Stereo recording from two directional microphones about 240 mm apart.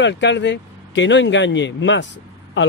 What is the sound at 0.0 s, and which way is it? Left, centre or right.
Speech, left.